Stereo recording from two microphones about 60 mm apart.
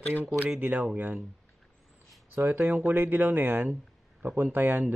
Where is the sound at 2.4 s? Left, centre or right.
Right.